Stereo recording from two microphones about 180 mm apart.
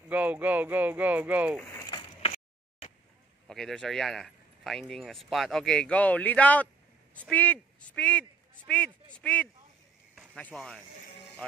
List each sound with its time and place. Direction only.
0.1 s speech: 10° right (ahead or behind)
1.7 s a sound: 20° left (ahead or behind)
3.4 s a man's voice: 5° left (ahead or behind)